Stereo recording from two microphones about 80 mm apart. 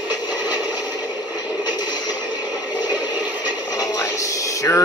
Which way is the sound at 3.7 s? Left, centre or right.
Left.